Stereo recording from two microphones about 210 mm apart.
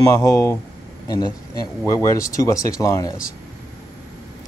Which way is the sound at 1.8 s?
15° left (ahead or behind).